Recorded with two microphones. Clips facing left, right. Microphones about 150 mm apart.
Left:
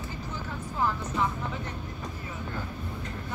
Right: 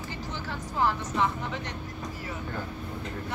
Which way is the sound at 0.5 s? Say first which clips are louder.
Right 2 dB; 75° right (ahead or behind).